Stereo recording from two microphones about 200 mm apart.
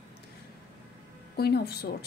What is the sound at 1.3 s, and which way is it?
Speech, 50° left (ahead or behind).